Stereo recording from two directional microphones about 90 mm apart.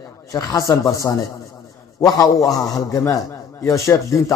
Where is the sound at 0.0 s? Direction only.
40° left (ahead or behind).